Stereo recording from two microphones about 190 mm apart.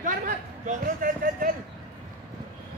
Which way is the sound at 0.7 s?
45° right (ahead or behind).